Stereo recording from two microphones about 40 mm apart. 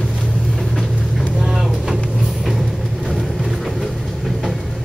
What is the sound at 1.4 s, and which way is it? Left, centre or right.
Vehicle, centre.